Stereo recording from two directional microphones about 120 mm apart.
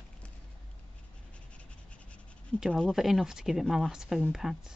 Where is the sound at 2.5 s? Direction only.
Centre (ahead or behind).